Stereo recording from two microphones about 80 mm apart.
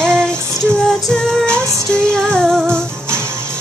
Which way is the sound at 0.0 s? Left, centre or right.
Centre.